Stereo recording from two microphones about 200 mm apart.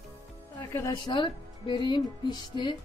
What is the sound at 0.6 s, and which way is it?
A woman's voice, 20° left (ahead or behind).